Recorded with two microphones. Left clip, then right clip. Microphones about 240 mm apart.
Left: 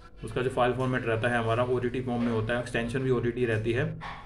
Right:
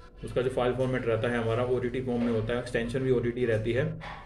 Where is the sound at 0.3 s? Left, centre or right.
Centre.